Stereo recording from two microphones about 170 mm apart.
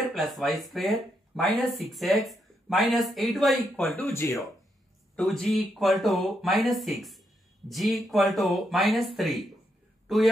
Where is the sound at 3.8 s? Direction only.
10° left (ahead or behind).